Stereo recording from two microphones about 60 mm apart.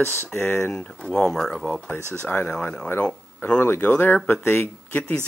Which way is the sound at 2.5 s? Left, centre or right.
Centre.